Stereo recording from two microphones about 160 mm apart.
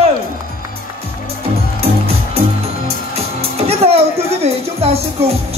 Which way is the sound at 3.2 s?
40° right (ahead or behind).